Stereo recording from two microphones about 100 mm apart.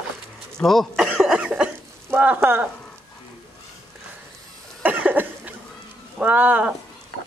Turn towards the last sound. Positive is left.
turn(degrees=-15)  # may be behind; listen again after turning